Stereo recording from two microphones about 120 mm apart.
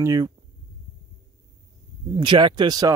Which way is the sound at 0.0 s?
30° right (ahead or behind).